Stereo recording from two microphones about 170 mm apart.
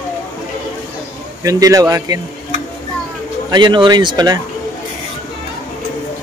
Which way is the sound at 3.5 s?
25° right (ahead or behind).